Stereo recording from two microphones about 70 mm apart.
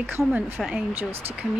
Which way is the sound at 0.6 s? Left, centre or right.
Centre.